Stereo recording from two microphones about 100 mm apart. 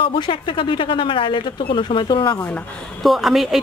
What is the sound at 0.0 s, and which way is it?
Speech, 60° left (ahead or behind).